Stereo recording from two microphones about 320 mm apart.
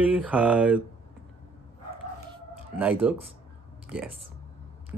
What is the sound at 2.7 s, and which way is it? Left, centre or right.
Speech, centre.